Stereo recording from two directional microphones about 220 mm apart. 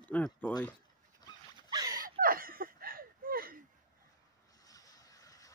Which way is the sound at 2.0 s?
40° right (ahead or behind).